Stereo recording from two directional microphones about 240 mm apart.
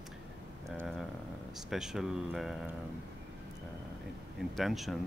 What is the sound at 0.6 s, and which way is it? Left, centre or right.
Speech, centre.